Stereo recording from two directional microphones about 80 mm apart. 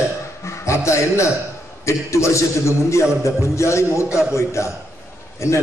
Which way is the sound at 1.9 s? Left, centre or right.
Left.